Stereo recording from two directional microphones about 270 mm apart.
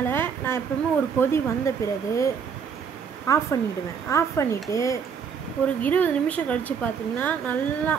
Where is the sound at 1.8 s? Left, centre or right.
Centre.